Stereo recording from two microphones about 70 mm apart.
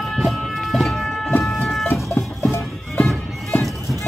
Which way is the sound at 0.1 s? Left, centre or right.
Centre.